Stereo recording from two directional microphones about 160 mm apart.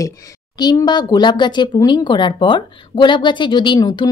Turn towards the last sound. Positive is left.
turn(degrees=30)  # may be behind; listen again after turning